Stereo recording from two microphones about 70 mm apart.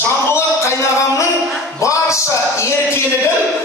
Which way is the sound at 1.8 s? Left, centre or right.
Left.